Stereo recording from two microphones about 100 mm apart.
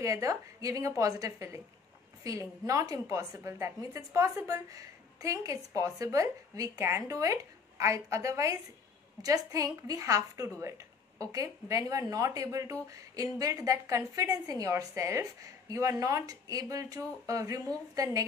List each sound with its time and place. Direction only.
0.0 s a woman's voice: 35° right (ahead or behind)